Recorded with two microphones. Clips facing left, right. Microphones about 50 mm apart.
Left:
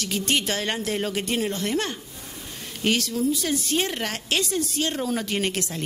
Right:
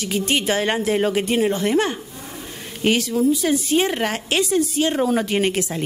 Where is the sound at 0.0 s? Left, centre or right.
Centre.